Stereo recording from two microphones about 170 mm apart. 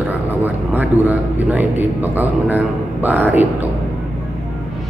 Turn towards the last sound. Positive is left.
turn(degrees=-10)  # may be behind; listen again after turning